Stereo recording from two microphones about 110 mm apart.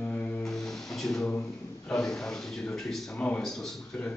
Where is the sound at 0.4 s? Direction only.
5° left (ahead or behind).